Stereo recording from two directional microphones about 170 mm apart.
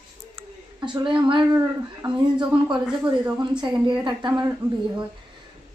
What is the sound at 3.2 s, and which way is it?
Speech, 25° right (ahead or behind).